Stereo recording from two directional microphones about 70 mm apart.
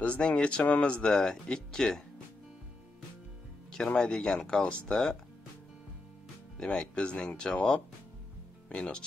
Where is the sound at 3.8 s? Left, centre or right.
Centre.